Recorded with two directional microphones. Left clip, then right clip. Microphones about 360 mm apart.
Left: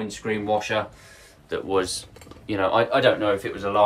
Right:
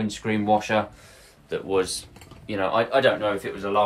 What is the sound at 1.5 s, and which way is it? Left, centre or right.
Speech, centre.